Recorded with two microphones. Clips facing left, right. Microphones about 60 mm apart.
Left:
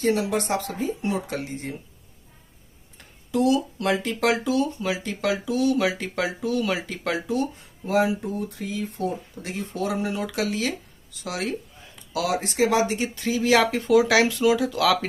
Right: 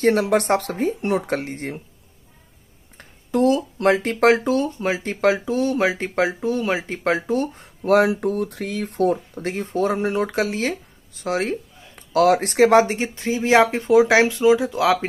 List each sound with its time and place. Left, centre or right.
0.0 s speech: right
3.0 s speech: right
7.8 s speech: right